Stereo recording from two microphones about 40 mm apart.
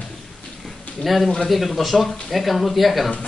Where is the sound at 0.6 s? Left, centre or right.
Centre.